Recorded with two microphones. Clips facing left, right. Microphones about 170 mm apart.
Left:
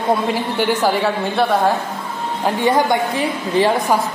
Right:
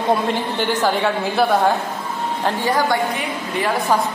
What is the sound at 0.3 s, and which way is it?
Speech, 10° left (ahead or behind).